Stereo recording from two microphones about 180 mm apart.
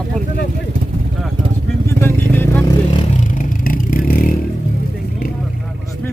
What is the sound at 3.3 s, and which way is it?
Vehicle, 50° left (ahead or behind).